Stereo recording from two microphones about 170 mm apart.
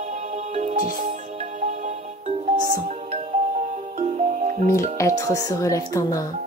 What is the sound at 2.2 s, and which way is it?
Music, 55° right (ahead or behind).